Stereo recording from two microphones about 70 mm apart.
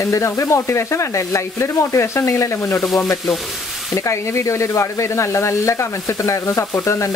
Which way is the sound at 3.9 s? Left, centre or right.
Left.